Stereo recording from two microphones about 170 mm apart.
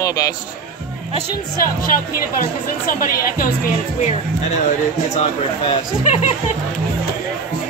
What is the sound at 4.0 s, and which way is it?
Speech, 40° left (ahead or behind).